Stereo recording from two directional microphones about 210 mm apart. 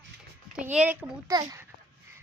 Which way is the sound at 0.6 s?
5° right (ahead or behind).